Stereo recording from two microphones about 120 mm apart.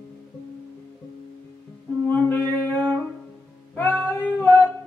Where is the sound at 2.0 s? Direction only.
15° left (ahead or behind).